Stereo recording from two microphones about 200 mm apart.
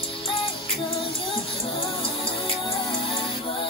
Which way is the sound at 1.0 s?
25° left (ahead or behind).